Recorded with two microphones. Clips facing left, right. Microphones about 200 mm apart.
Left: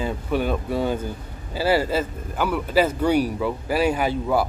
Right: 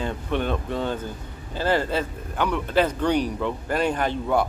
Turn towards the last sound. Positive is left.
turn(degrees=5)  # may be behind; listen again after turning